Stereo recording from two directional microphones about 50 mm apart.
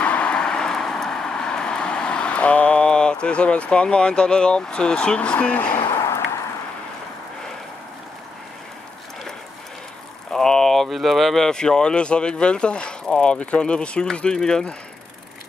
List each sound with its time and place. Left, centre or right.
0.0 s vehicle: left
5.9 s a sound: left
10.3 s speech: centre